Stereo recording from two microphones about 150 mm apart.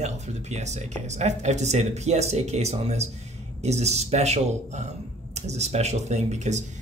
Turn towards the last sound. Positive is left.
turn(degrees=-50)  # may be behind; listen again after turning